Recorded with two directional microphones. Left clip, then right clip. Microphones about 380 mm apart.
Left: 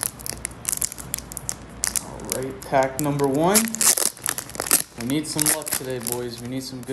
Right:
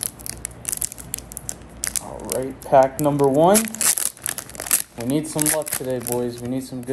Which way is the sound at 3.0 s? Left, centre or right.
Centre.